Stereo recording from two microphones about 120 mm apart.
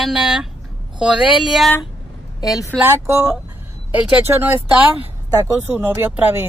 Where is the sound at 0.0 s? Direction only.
5° right (ahead or behind).